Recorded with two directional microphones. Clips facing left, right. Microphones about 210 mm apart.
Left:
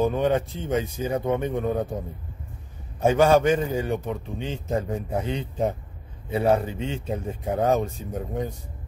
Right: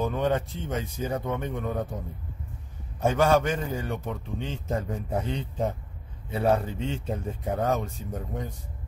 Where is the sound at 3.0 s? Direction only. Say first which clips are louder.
Left 4 dB; 15° left (ahead or behind).